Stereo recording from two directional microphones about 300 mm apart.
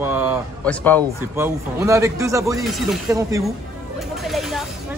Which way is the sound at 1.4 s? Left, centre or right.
Centre.